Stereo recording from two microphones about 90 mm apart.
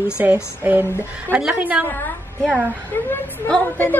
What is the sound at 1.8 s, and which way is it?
Speech, 20° left (ahead or behind).